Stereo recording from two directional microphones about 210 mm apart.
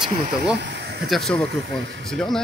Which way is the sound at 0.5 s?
55° right (ahead or behind).